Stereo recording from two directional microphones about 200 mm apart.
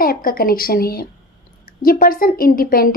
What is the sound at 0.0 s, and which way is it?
A woman's voice, 45° left (ahead or behind).